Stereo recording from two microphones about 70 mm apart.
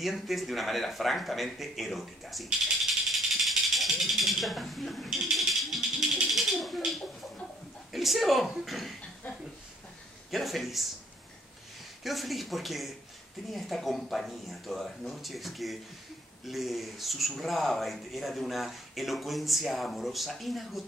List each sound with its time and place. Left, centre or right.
0.0 s speech: centre
7.9 s speech: centre
10.3 s speech: centre
12.0 s speech: centre